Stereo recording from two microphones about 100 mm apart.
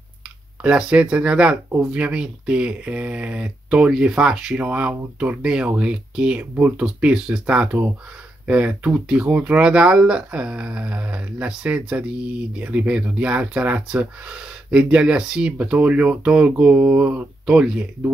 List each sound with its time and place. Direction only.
0.6 s speech: 10° right (ahead or behind)